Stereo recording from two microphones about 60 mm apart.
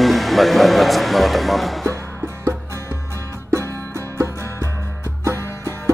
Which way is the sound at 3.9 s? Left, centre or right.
Right.